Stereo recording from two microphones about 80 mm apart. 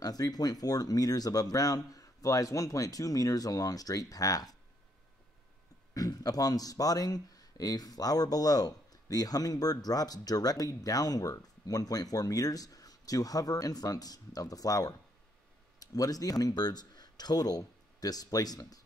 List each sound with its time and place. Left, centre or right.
0.0 s speech: left
5.9 s speech: left